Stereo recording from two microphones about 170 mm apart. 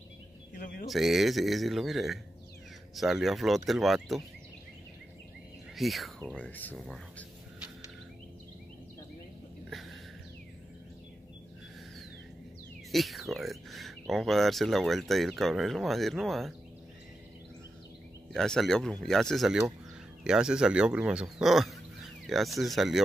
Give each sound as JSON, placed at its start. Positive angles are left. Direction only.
{"t": 0.6, "sound": "a man's voice", "side_deg": 55}
{"t": 0.8, "sound": "speech", "side_deg": 0}
{"t": 5.8, "sound": "speech", "side_deg": 0}
{"t": 9.7, "sound": "a sound", "side_deg": 0}
{"t": 12.9, "sound": "speech", "side_deg": 0}
{"t": 18.3, "sound": "speech", "side_deg": 5}